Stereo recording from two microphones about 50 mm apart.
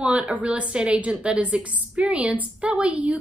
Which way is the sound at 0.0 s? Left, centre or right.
Right.